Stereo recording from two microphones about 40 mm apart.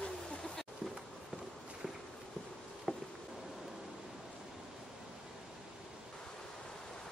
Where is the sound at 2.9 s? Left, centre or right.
Centre.